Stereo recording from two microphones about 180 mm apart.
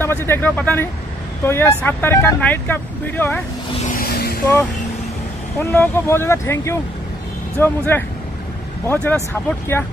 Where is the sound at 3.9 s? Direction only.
55° left (ahead or behind).